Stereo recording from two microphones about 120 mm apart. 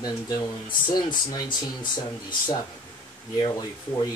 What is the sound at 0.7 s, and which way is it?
Speech, 35° left (ahead or behind).